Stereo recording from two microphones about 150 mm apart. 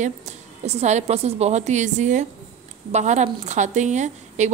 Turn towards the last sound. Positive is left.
turn(degrees=-50)  # may be behind; listen again after turning